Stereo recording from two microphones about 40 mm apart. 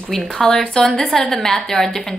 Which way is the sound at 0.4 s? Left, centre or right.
Centre.